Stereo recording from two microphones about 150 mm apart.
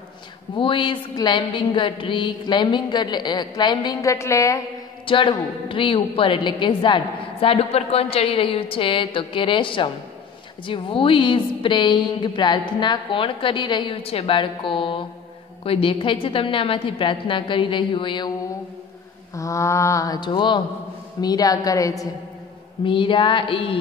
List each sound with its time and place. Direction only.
0.6 s a woman's voice: 35° left (ahead or behind)
5.0 s a woman's voice: 35° left (ahead or behind)
19.3 s a woman's voice: 20° left (ahead or behind)
22.8 s a woman's voice: 35° left (ahead or behind)